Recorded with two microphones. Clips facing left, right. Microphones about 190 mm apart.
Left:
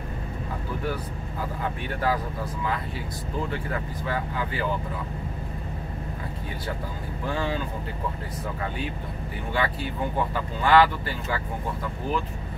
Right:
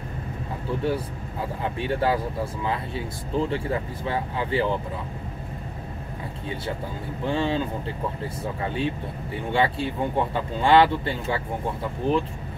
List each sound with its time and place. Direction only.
0.7 s vehicle: 30° right (ahead or behind)
3.3 s speech: 25° right (ahead or behind)
7.2 s speech: 25° right (ahead or behind)
9.5 s speech: 25° right (ahead or behind)